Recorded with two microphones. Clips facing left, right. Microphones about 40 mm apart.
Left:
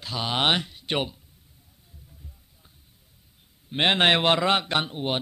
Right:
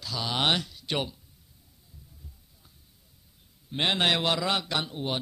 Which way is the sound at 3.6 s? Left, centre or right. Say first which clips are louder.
Left 5 dB; left.